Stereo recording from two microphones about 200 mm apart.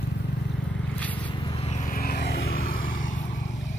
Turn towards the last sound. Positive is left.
turn(degrees=40)  # may be behind; listen again after turning